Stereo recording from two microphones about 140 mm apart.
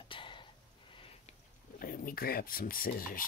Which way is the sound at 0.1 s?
35° left (ahead or behind).